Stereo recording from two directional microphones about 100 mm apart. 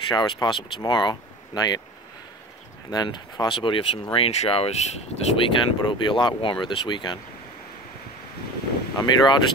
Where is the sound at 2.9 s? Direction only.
40° left (ahead or behind).